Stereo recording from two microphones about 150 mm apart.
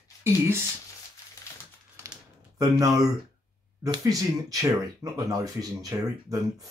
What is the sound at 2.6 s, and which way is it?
Speech, 20° right (ahead or behind).